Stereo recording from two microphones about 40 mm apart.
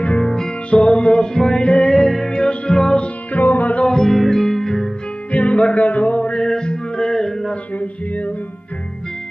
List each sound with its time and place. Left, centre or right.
0.2 s music: centre
2.0 s music: centre
2.3 s music: left
3.3 s music: left
3.8 s music: centre
5.3 s music: left
6.3 s music: centre
7.7 s a sound: left